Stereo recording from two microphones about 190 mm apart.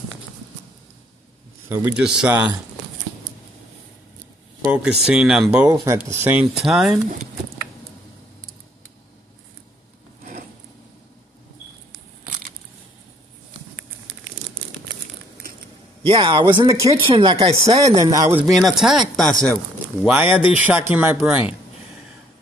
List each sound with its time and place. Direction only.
1.7 s speech: 10° right (ahead or behind)
4.8 s speech: 5° right (ahead or behind)
6.5 s speech: centre (ahead or behind)
16.1 s speech: 30° right (ahead or behind)
17.6 s speech: 35° right (ahead or behind)
18.0 s speech: 15° right (ahead or behind)
18.5 s speech: centre (ahead or behind)